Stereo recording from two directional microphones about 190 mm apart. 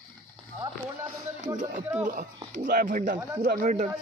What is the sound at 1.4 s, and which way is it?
Speech, 40° right (ahead or behind).